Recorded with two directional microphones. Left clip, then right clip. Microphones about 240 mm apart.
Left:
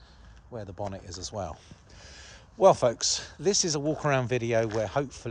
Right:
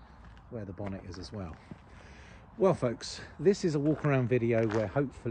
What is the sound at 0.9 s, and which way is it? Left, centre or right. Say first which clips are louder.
Speech: left 7 dB; centre.